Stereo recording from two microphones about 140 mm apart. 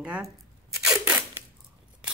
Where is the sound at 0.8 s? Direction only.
5° right (ahead or behind).